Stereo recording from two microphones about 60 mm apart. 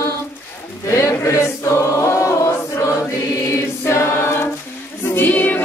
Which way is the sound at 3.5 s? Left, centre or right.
Left.